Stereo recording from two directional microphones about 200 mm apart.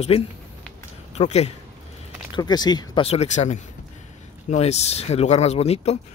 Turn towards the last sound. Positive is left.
turn(degrees=30)  # may be behind; listen again after turning